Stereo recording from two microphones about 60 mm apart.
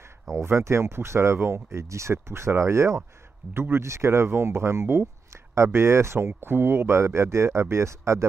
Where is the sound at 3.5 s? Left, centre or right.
Right.